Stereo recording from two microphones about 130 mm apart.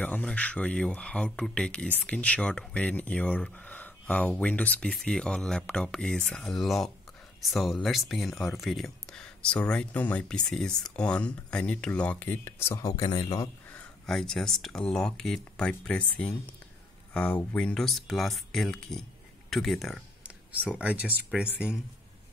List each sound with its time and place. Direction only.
0.0 s speech: 10° left (ahead or behind); by 13.5 s 30° left (ahead or behind)
13.7 s speech: 5° left (ahead or behind)
20.2 s speech: 10° right (ahead or behind)